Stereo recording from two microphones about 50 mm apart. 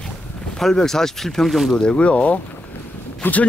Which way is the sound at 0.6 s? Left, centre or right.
Centre.